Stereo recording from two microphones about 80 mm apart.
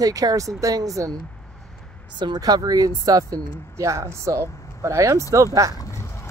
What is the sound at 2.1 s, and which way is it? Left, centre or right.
Speech, right.